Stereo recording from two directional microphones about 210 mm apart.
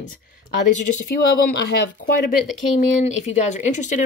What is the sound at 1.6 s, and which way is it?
Speech, 50° left (ahead or behind).